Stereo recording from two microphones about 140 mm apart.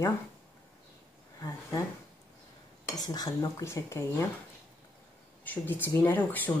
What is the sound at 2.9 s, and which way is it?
Speech, 30° left (ahead or behind).